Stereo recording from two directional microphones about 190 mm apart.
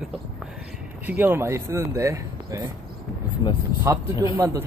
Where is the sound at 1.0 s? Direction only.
10° right (ahead or behind).